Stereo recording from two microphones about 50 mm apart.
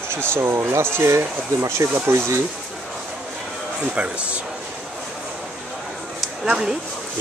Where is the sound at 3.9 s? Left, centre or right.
Right.